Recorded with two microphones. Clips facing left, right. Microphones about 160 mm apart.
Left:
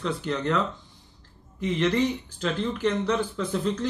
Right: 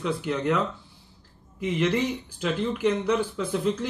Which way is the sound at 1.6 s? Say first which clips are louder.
Left 1 dB; 10° right (ahead or behind).